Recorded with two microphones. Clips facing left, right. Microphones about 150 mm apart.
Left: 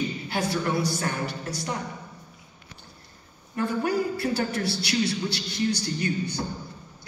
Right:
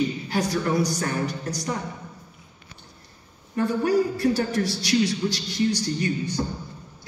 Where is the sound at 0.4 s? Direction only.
35° right (ahead or behind).